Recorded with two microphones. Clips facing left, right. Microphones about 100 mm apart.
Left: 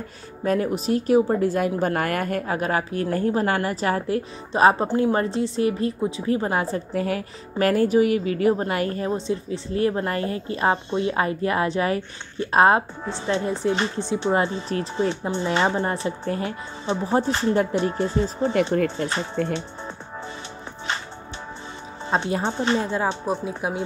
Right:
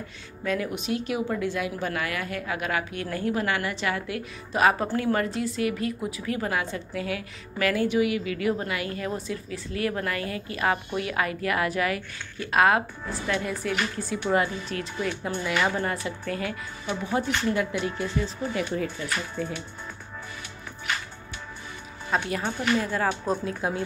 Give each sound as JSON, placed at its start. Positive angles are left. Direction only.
{"t": 0.4, "sound": "a woman's voice", "side_deg": 40}
{"t": 18.7, "sound": "speech", "side_deg": 50}
{"t": 19.4, "sound": "speech", "side_deg": 65}
{"t": 22.1, "sound": "speech", "side_deg": 30}
{"t": 23.6, "sound": "speech", "side_deg": 15}